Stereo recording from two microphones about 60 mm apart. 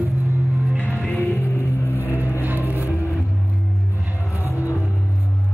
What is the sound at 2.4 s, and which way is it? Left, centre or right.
Music, right.